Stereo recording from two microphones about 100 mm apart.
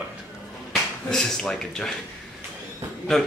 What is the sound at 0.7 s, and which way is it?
Speech, 5° left (ahead or behind).